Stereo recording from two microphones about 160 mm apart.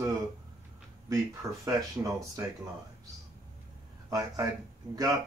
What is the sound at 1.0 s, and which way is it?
Speech, 20° right (ahead or behind).